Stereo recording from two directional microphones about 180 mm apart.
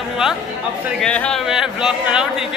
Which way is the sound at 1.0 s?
5° left (ahead or behind).